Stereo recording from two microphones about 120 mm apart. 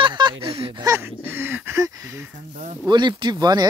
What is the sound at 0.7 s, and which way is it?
Speech, 30° right (ahead or behind).